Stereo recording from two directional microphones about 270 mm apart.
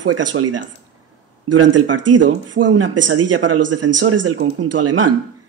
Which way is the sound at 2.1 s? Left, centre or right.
Right.